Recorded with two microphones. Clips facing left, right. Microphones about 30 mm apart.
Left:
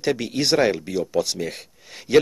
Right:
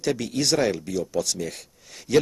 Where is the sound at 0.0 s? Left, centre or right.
Left.